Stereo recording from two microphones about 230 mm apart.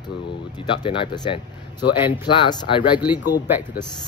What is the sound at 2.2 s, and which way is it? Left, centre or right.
Speech, centre.